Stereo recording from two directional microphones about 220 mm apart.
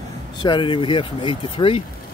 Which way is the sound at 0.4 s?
20° left (ahead or behind).